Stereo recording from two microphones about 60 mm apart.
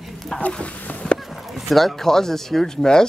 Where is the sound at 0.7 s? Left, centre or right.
Left.